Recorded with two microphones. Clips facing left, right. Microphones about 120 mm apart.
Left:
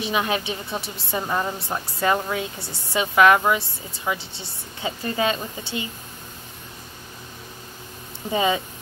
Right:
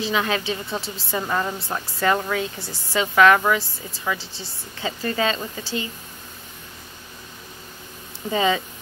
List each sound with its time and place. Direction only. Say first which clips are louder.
0.1 s a woman's voice: left 1 dB; 20° left (ahead or behind)
8.3 s a woman's voice: right 1 dB; 20° left (ahead or behind)